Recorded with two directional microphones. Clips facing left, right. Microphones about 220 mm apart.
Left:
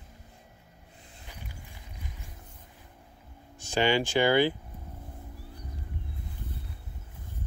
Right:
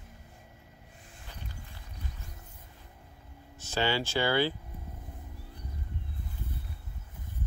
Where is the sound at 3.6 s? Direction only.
15° left (ahead or behind).